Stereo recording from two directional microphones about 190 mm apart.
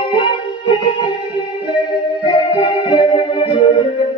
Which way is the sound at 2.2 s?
25° left (ahead or behind).